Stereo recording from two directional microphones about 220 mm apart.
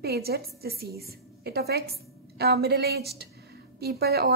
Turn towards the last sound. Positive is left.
turn(degrees=-45)  # may be behind; listen again after turning